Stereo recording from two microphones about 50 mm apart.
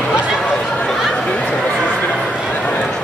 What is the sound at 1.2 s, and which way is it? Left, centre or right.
Chatter, left.